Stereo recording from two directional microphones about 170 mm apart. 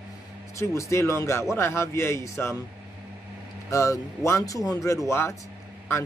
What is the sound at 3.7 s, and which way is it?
A man's voice, 20° left (ahead or behind).